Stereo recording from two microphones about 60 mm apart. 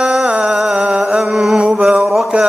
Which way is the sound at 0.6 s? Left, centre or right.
Centre.